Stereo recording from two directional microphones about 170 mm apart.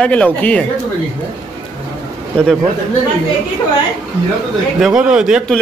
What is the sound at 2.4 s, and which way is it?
Speech, 5° left (ahead or behind).